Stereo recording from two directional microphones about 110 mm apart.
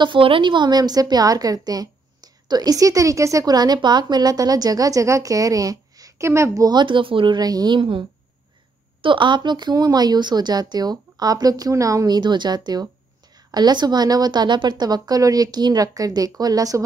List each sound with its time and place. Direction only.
0.0 s a woman's voice: 50° right (ahead or behind)
9.0 s a woman's voice: 50° right (ahead or behind); by 16.8 s 35° right (ahead or behind)